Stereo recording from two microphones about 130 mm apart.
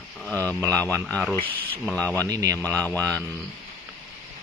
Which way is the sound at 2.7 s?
15° left (ahead or behind).